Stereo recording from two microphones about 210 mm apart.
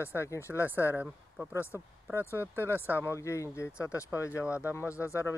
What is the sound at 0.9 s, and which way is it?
Speech, 5° right (ahead or behind).